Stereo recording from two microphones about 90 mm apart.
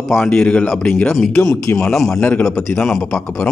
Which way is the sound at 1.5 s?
25° left (ahead or behind).